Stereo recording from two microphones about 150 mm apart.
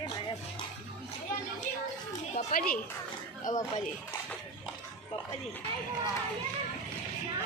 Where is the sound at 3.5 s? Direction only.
60° left (ahead or behind).